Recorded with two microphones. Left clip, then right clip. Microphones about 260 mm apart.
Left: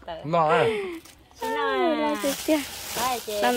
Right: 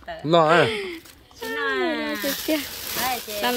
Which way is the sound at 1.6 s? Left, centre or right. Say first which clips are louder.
Left 1 dB; left.